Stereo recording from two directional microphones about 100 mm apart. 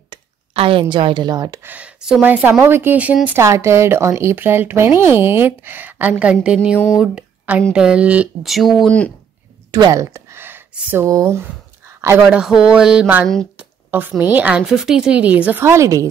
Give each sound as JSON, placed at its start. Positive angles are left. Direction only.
{"t": 0.1, "sound": "speech", "side_deg": -60}
{"t": 1.6, "sound": "speech", "side_deg": -20}
{"t": 3.3, "sound": "speech", "side_deg": -25}
{"t": 8.5, "sound": "speech", "side_deg": 0}
{"t": 9.7, "sound": "a sound", "side_deg": -35}
{"t": 11.1, "sound": "speech", "side_deg": -30}
{"t": 12.3, "sound": "speech", "side_deg": -10}
{"t": 13.6, "sound": "a sound", "side_deg": -15}
{"t": 14.3, "sound": "speech", "side_deg": -15}
{"t": 14.7, "sound": "speech", "side_deg": -5}
{"t": 15.6, "sound": "speech", "side_deg": -30}